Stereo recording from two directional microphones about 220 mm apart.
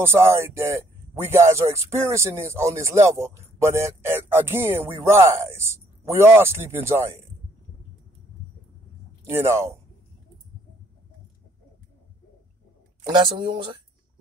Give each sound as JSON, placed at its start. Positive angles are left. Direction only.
{"t": 0.0, "sound": "speech", "side_deg": -10}
{"t": 9.2, "sound": "speech", "side_deg": -10}
{"t": 13.0, "sound": "speech", "side_deg": -20}